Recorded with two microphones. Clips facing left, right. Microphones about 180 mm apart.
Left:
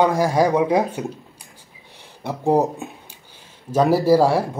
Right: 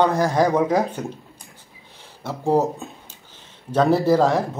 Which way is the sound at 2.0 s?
15° left (ahead or behind).